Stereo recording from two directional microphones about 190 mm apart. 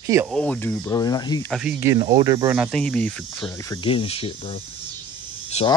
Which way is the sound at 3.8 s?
30° left (ahead or behind).